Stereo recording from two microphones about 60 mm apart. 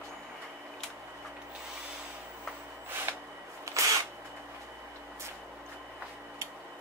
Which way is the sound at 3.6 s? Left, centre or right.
Right.